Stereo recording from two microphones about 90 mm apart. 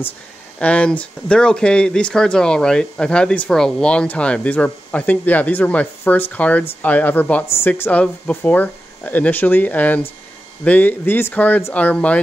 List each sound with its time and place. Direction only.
0.6 s speech: 15° left (ahead or behind)